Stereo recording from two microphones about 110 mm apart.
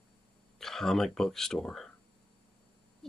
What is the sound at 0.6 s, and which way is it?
Speech, 5° left (ahead or behind).